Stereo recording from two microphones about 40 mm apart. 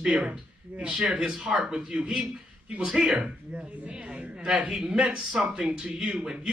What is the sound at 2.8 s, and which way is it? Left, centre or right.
Speech, right.